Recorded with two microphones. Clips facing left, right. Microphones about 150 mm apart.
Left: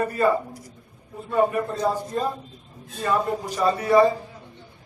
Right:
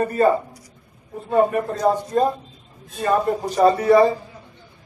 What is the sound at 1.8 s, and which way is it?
Speech, 40° right (ahead or behind).